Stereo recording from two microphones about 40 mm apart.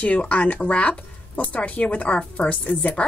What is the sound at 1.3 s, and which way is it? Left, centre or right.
A woman's voice, left.